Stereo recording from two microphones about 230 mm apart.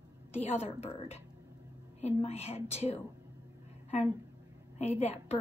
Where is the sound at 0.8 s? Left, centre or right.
Left.